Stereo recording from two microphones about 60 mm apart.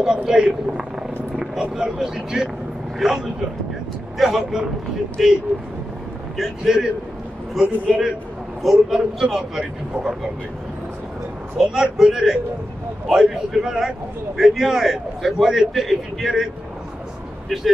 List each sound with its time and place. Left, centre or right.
0.0 s a man's voice: centre
11.6 s a man's voice: centre